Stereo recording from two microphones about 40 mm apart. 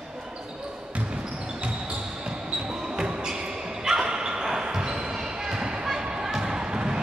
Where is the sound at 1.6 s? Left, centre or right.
Right.